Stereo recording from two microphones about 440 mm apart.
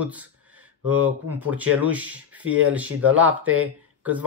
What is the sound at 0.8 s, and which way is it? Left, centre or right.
Speech, right.